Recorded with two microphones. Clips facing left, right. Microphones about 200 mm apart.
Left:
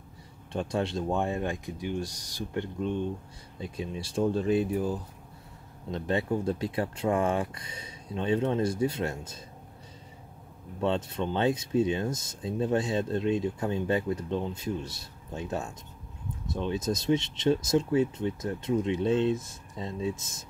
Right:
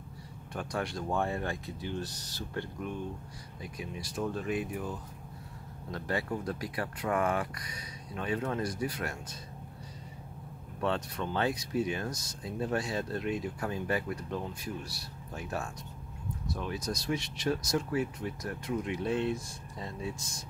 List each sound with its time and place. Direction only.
0.5 s speech: 25° left (ahead or behind)
10.8 s speech: 20° left (ahead or behind)